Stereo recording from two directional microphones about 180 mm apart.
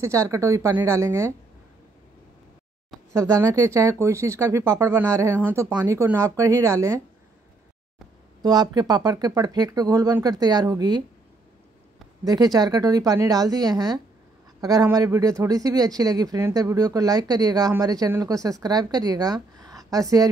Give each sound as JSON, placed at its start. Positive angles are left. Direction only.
{"t": 0.0, "sound": "speech", "side_deg": -15}
{"t": 3.1, "sound": "speech", "side_deg": -15}
{"t": 8.4, "sound": "speech", "side_deg": -25}
{"t": 12.3, "sound": "speech", "side_deg": -20}